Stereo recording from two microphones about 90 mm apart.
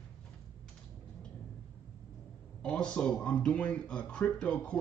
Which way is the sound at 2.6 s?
10° left (ahead or behind).